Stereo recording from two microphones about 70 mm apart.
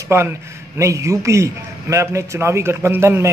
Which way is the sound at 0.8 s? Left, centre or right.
Right.